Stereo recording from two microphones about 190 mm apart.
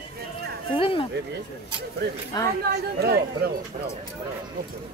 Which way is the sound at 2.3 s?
20° left (ahead or behind).